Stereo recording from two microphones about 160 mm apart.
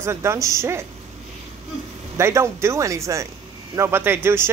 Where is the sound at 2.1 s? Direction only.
15° right (ahead or behind).